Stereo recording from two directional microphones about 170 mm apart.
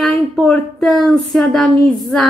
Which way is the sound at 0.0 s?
Centre (ahead or behind).